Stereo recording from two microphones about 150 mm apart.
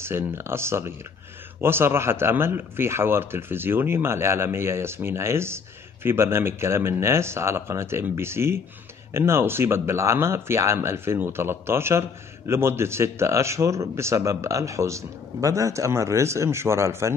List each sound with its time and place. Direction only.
0.0 s speech: 15° right (ahead or behind)